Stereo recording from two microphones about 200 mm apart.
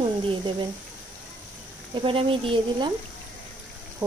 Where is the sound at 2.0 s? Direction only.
25° right (ahead or behind).